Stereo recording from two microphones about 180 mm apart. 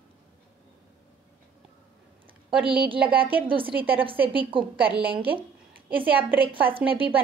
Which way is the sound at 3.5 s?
30° right (ahead or behind).